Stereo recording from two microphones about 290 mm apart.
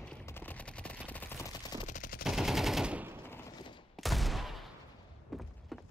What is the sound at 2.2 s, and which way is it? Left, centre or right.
Machine gun, centre.